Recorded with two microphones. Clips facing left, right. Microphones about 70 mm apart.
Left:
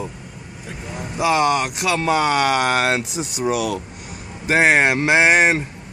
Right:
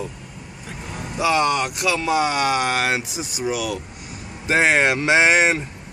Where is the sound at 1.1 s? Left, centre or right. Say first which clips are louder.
Left 2 dB; centre.